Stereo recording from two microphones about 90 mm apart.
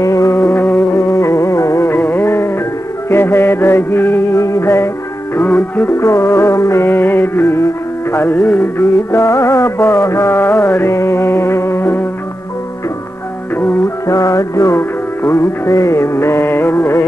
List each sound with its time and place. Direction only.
0.0 s music: 35° left (ahead or behind); by 0.9 s 20° left (ahead or behind)
0.9 s music: 30° left (ahead or behind)
2.0 s music: 25° left (ahead or behind)
5.4 s music: 20° left (ahead or behind)
13.6 s music: 20° left (ahead or behind)
14.0 s music: 35° left (ahead or behind)